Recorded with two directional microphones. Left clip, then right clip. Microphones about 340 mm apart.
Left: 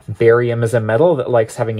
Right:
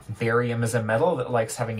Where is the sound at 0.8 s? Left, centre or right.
Left.